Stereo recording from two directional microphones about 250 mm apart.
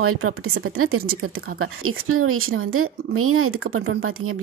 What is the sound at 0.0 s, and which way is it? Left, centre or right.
Speech, right.